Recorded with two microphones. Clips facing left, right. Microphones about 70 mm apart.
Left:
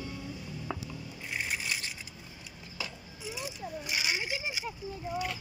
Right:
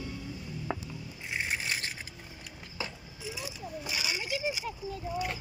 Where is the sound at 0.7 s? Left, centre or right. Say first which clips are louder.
Right 2 dB; right.